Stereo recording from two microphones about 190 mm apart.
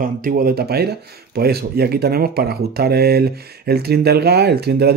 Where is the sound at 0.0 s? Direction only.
50° right (ahead or behind).